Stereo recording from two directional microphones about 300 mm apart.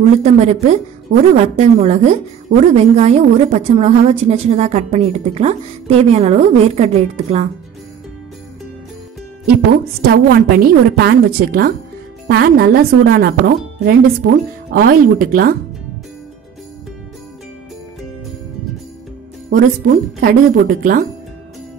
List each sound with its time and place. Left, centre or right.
0.2 s a woman's voice: right
9.7 s a woman's voice: right
19.5 s a woman's voice: right